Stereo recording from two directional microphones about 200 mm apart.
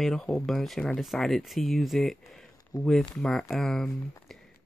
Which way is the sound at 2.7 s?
15° left (ahead or behind).